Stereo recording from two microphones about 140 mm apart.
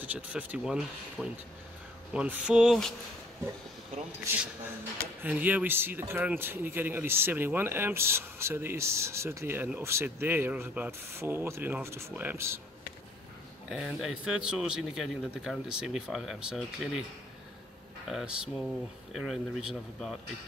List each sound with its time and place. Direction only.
0.0 s a man's voice: 10° right (ahead or behind)
5.2 s a man's voice: 10° right (ahead or behind)
13.7 s a man's voice: 5° right (ahead or behind)
18.0 s a man's voice: 5° right (ahead or behind)